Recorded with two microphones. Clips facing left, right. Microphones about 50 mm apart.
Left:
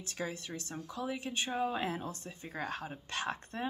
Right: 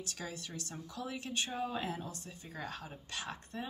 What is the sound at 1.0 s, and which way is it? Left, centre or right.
A woman's voice, centre.